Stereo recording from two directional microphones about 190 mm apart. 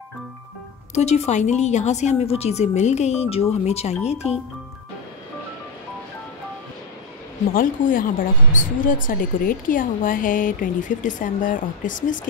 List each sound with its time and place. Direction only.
0.9 s a woman's voice: 35° left (ahead or behind)
7.5 s speech: 45° left (ahead or behind)